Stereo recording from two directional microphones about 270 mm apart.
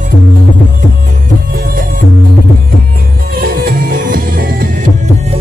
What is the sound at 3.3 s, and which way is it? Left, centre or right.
Music, right.